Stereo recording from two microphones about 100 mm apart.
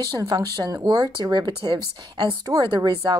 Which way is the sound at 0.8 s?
40° right (ahead or behind).